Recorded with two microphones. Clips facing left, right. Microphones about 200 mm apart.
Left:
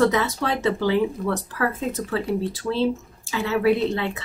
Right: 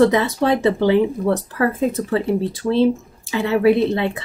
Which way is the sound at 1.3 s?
30° right (ahead or behind).